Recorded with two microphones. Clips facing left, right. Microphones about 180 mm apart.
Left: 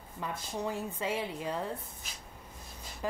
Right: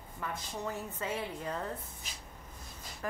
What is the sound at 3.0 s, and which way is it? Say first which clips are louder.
Speech: left 3 dB; 20° left (ahead or behind).